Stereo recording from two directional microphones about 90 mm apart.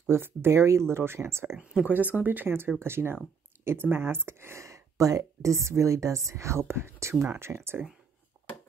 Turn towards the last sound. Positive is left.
turn(degrees=-30)  # may be behind; listen again after turning